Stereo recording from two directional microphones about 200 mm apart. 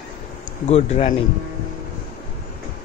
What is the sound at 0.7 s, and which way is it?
Speech, 30° left (ahead or behind).